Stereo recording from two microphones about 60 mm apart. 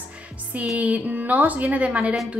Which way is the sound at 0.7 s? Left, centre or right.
Right.